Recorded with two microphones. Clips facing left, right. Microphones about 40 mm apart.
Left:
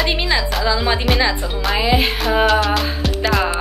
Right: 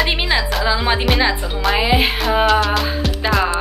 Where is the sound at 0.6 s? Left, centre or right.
Centre.